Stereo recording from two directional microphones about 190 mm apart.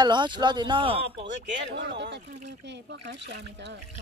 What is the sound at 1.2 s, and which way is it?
Speech, 65° right (ahead or behind).